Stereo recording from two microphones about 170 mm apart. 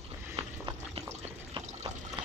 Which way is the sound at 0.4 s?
35° right (ahead or behind).